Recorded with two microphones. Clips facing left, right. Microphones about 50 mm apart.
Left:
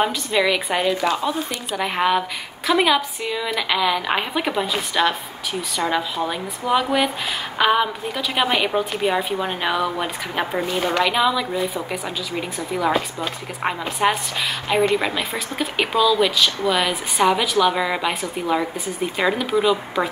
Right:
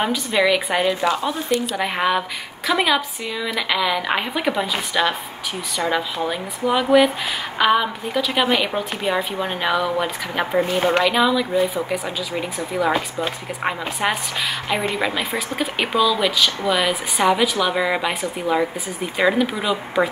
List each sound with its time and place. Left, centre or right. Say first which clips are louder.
0.0 s speech: right 1 dB; centre
10.6 s a woman's voice: right 6 dB; right
11.1 s speech: right 1 dB; centre